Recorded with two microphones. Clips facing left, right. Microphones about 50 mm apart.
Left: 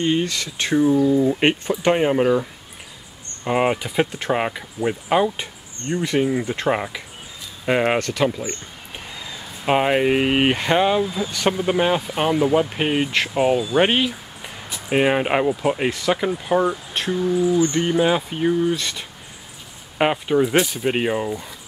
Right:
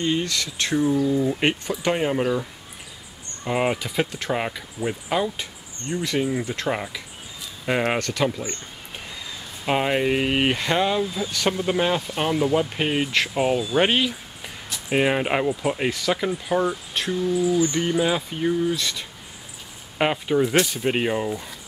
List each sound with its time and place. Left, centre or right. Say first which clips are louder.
0.0 s speech: left 3 dB; centre
3.4 s speech: left 3 dB; centre
9.7 s speech: left 4 dB; centre
17.1 s speech: left 3 dB; left; by 21.5 s centre